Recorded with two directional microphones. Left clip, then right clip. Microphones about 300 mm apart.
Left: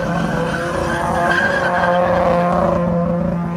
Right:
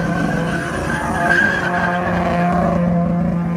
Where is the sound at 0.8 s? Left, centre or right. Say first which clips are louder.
Left 2 dB; left.